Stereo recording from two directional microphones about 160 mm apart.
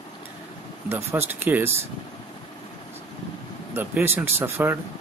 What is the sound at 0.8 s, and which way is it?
Speech, 15° right (ahead or behind).